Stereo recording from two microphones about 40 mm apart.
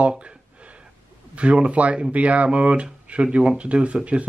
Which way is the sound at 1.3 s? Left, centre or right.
Right.